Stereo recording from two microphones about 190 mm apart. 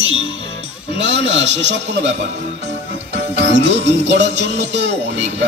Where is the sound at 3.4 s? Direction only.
65° right (ahead or behind).